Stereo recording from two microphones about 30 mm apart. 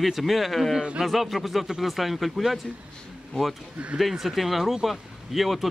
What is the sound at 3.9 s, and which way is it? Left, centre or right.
Speech, centre.